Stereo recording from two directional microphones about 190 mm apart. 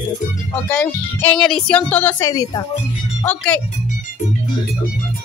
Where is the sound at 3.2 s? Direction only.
5° left (ahead or behind).